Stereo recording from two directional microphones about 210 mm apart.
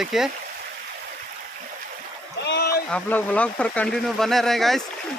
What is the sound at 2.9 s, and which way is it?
Speech, 10° left (ahead or behind).